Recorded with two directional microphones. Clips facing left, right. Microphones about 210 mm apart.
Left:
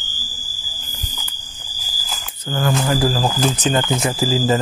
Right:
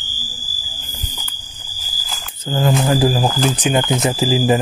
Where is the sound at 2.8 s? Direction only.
20° right (ahead or behind).